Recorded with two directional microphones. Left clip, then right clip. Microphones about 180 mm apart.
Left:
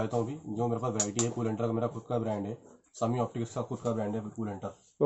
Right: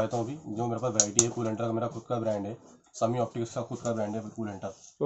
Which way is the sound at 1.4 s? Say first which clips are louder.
Right 1 dB; centre (ahead or behind).